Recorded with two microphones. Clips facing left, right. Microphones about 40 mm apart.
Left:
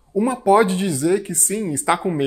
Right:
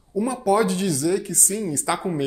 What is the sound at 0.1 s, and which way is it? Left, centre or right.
Speech, left.